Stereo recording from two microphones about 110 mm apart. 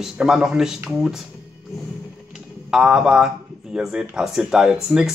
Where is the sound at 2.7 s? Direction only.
5° right (ahead or behind).